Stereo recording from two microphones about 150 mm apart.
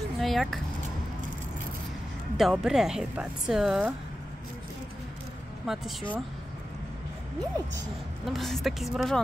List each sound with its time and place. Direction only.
0.2 s speech: centre (ahead or behind)
2.3 s a woman's voice: centre (ahead or behind)
5.7 s a woman's voice: centre (ahead or behind)
8.3 s a woman's voice: centre (ahead or behind)